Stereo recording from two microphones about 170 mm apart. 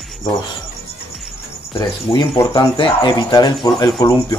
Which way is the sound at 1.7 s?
25° left (ahead or behind).